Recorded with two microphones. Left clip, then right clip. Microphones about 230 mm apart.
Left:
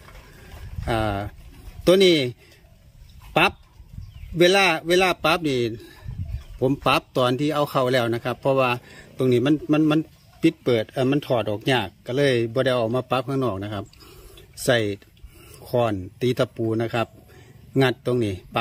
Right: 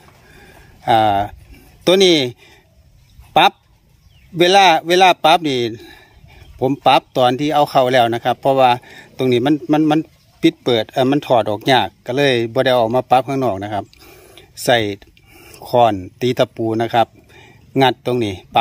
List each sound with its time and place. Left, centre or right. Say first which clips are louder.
0.8 s speech: right 12 dB; centre
4.4 s speech: right 7 dB; centre